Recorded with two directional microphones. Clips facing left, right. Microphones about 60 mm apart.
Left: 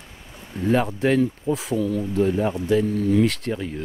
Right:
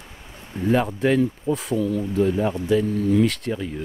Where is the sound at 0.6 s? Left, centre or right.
Centre.